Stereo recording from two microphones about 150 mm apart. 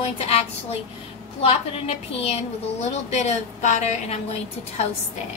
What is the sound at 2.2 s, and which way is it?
A woman's voice, 45° left (ahead or behind).